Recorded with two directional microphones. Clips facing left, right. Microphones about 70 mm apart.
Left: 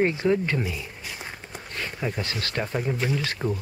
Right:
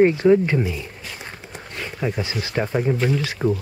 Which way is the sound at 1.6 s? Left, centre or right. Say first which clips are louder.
Right 4 dB; centre.